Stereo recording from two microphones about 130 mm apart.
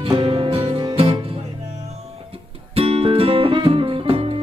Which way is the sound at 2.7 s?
45° right (ahead or behind).